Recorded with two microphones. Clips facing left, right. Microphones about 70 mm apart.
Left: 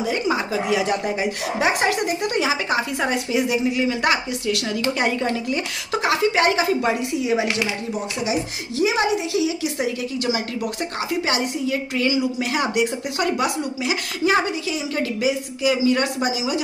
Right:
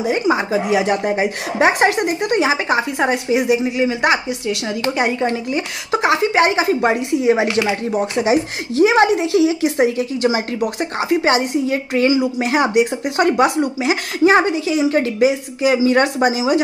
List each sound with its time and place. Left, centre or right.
0.0 s speech: right
2.0 s speech: right
6.8 s speech: right
7.9 s speech: right
13.2 s speech: right